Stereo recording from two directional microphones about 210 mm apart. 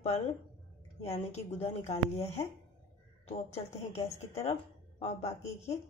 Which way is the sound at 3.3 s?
30° left (ahead or behind).